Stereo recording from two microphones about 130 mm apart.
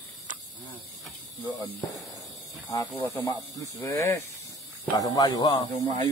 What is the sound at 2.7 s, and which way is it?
Speech, 25° left (ahead or behind).